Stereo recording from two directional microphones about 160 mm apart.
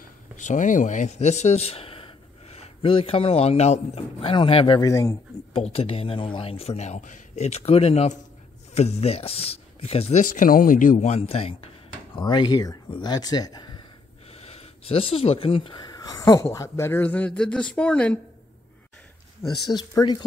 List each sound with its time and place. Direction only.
0.4 s a man's voice: 50° left (ahead or behind); by 4.7 s 35° left (ahead or behind)
4.7 s speech: 20° left (ahead or behind)
5.5 s a man's voice: 40° left (ahead or behind)
10.2 s a man's voice: 55° left (ahead or behind); by 13.8 s 25° left (ahead or behind)
14.3 s speech: 40° left (ahead or behind); by 18.2 s 5° left (ahead or behind)
19.4 s speech: 25° left (ahead or behind)